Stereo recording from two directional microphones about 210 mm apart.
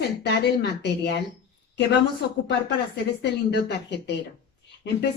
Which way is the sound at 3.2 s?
55° left (ahead or behind).